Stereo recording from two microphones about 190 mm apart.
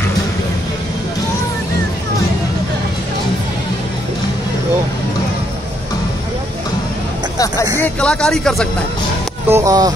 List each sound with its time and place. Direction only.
7.8 s speech: 5° left (ahead or behind)
9.5 s speech: 15° right (ahead or behind)